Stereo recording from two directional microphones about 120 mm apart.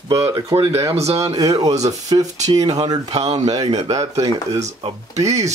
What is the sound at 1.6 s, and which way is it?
Speech, 70° right (ahead or behind).